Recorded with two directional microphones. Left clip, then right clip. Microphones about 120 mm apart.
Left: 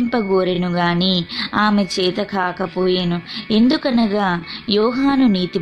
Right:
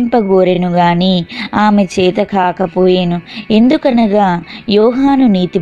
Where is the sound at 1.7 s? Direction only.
35° right (ahead or behind).